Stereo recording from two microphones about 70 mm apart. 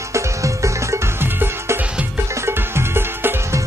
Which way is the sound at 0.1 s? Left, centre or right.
Right.